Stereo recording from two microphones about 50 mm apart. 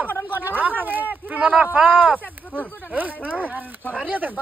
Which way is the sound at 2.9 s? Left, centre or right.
Right.